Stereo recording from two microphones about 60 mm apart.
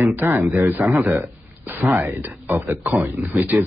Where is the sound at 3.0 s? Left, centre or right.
Right.